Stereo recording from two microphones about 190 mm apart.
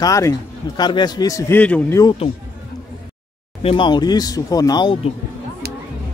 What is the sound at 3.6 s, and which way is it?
Speech, 25° left (ahead or behind).